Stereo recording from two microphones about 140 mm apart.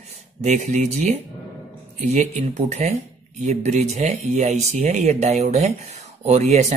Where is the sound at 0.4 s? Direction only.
60° right (ahead or behind).